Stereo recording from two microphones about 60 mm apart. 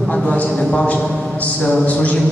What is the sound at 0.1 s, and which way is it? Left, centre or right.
A man's voice, centre.